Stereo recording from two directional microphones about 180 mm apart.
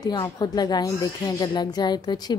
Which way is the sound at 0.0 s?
25° left (ahead or behind).